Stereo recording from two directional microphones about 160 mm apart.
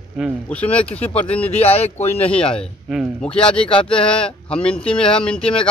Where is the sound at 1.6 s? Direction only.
40° left (ahead or behind).